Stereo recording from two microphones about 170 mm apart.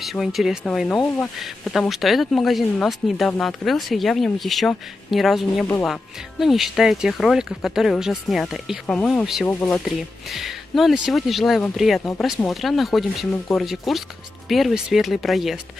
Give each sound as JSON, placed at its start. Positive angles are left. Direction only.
{"t": 0.0, "sound": "speech", "side_deg": 0}
{"t": 9.5, "sound": "speech", "side_deg": 10}
{"t": 9.8, "sound": "speech", "side_deg": 0}